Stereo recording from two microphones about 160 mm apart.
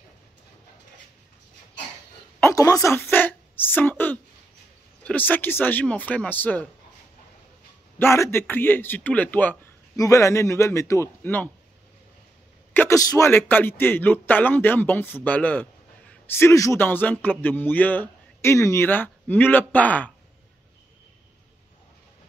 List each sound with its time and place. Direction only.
2.4 s a man's voice: 20° left (ahead or behind)
8.0 s a man's voice: 15° left (ahead or behind)
12.7 s a man's voice: 15° left (ahead or behind)